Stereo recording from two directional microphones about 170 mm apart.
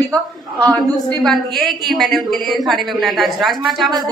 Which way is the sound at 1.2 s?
Centre (ahead or behind).